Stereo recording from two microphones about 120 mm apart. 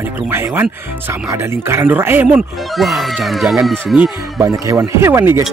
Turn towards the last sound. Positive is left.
turn(degrees=-20)  # may be behind; listen again after turning